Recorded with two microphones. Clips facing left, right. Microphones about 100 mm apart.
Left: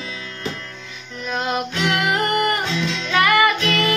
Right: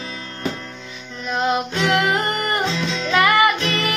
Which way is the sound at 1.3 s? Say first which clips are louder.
Right 3 dB; 20° right (ahead or behind).